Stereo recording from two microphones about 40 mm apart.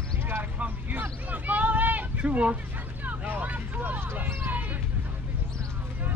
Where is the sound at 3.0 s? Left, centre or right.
Right.